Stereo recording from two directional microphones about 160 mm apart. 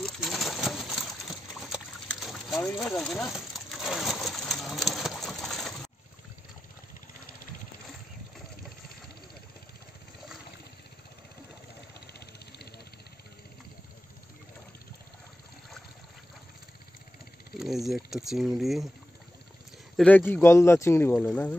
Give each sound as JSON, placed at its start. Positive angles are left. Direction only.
{"t": 0.0, "sound": "pigeon", "side_deg": 0}
{"t": 1.7, "sound": "a sound", "side_deg": 0}
{"t": 12.1, "sound": "vehicle", "side_deg": 85}
{"t": 17.6, "sound": "speech", "side_deg": 0}
{"t": 20.0, "sound": "speech", "side_deg": 10}